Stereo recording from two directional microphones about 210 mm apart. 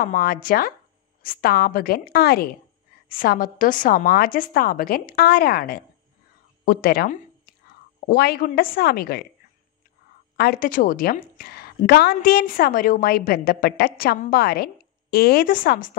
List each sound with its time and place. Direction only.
0.0 s a woman's voice: 45° left (ahead or behind)
10.3 s a woman's voice: 50° left (ahead or behind)